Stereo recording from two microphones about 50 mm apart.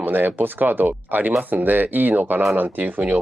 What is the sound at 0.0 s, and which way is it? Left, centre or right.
Speech, right.